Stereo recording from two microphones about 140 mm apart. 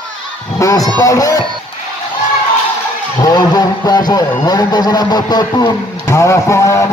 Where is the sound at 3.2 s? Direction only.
30° left (ahead or behind).